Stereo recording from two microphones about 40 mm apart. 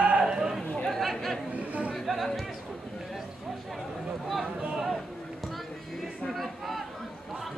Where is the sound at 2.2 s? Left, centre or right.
Centre.